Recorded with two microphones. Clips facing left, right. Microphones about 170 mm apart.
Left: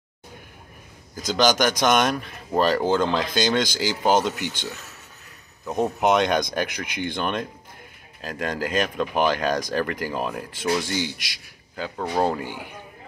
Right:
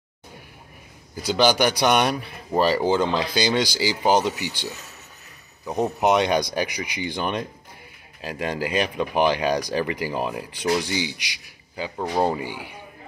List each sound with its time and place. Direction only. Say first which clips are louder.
1.3 s speech: right 1 dB; 10° right (ahead or behind)
10.9 s speech: even; 50° left (ahead or behind)
11.7 s speech: right 1 dB; 10° right (ahead or behind)
12.4 s speech: right 1 dB; 50° left (ahead or behind)